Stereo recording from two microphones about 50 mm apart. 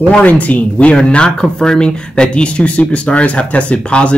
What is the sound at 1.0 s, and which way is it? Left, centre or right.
Speech, centre.